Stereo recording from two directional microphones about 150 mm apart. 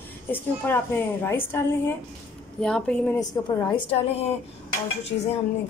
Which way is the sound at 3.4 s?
25° left (ahead or behind).